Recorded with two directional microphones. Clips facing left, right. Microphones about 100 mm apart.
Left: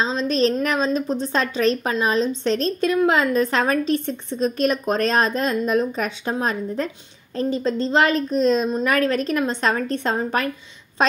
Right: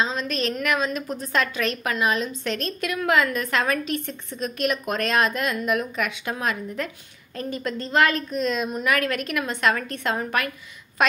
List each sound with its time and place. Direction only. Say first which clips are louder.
0.0 s a woman's voice: left 5 dB; 30° left (ahead or behind)